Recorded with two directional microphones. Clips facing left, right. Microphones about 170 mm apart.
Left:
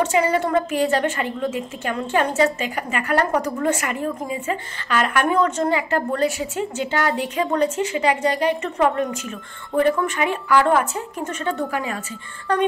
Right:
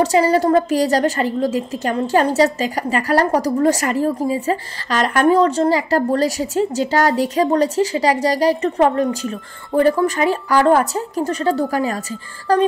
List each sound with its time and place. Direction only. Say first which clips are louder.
0.0 s a woman's voice: right 5 dB; 35° right (ahead or behind)